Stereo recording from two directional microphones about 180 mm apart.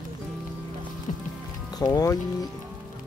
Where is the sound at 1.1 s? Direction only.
40° left (ahead or behind).